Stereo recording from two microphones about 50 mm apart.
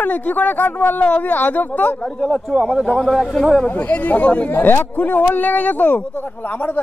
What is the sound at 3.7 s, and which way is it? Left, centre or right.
Speech, left.